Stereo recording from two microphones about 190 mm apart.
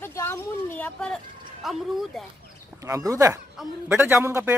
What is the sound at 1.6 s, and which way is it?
Speech, centre (ahead or behind).